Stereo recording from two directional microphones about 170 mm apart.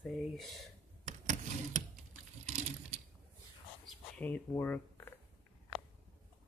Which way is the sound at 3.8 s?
5° left (ahead or behind).